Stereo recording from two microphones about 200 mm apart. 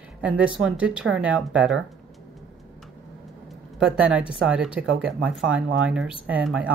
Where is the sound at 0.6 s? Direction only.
5° right (ahead or behind).